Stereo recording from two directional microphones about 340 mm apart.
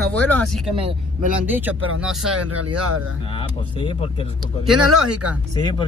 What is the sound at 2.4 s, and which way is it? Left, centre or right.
Speech, right.